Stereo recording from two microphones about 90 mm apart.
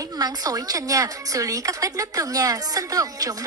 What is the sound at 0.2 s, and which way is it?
A woman's voice, 45° right (ahead or behind).